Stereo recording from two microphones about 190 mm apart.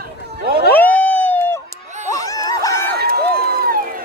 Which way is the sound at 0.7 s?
10° left (ahead or behind).